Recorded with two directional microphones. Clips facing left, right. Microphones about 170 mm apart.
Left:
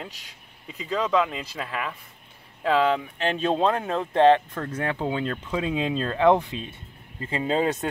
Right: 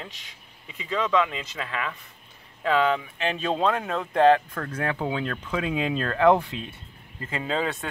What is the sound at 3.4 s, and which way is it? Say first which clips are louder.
Speech: left 2 dB; 30° left (ahead or behind).